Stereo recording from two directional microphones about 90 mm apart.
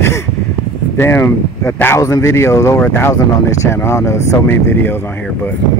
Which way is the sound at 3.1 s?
30° left (ahead or behind).